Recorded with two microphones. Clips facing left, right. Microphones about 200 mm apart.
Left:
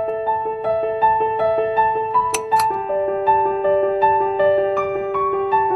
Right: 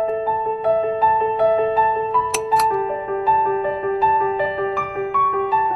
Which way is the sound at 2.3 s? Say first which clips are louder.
Right 1 dB; centre (ahead or behind).